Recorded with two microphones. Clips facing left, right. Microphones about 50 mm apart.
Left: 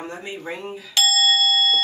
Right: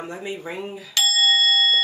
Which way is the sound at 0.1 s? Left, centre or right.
Centre.